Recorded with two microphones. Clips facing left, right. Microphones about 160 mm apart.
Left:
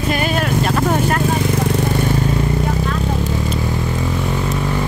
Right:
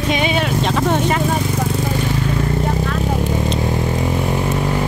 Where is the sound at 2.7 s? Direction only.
45° right (ahead or behind).